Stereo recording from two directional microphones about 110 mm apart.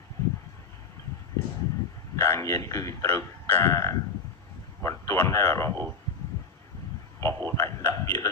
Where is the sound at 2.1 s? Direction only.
25° left (ahead or behind).